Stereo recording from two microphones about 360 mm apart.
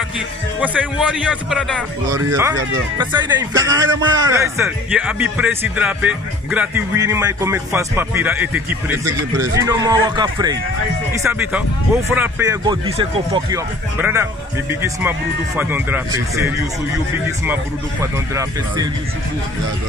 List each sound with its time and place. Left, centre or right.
0.6 s a man's voice: centre
3.8 s a man's voice: right
4.3 s a man's voice: centre